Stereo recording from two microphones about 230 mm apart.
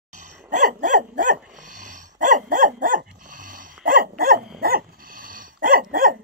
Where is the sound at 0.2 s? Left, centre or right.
Right.